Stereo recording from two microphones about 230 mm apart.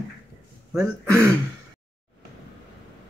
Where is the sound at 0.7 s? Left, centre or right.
Centre.